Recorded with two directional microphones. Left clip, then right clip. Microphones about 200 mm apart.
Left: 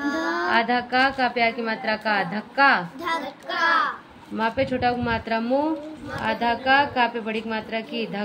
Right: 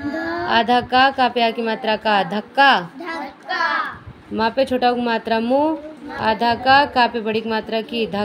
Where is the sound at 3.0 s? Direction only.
65° left (ahead or behind).